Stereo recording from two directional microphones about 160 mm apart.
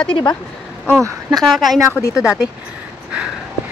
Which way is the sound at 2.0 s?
20° left (ahead or behind).